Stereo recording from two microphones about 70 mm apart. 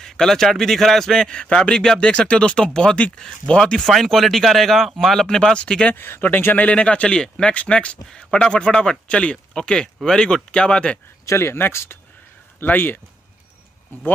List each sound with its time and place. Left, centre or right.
0.0 s a man's voice: centre
5.9 s a man's voice: left; by 11.0 s centre
11.2 s speech: left